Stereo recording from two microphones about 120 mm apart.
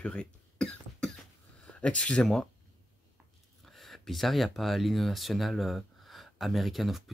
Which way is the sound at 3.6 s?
Centre (ahead or behind).